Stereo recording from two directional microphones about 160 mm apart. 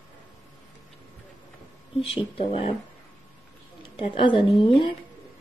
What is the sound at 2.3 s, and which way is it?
Speech, 35° left (ahead or behind).